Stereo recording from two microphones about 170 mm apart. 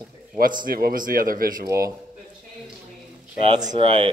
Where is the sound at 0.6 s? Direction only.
60° right (ahead or behind).